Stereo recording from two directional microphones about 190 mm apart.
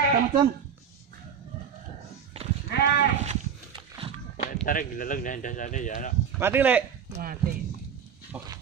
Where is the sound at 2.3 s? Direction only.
35° right (ahead or behind).